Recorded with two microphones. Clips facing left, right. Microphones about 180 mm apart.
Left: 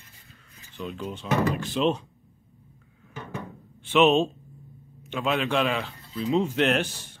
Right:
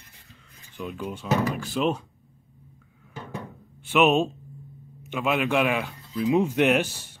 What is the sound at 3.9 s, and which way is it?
Speech, 5° right (ahead or behind).